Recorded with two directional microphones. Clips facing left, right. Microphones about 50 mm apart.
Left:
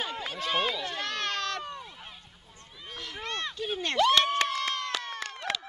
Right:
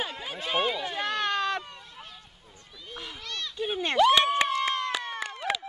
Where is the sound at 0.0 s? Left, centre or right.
Centre.